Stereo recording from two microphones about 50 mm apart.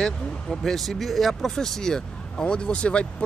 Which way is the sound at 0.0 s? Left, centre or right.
Centre.